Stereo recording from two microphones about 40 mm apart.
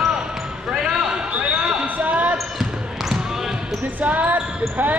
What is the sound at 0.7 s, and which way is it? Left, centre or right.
Basketball bounce, centre.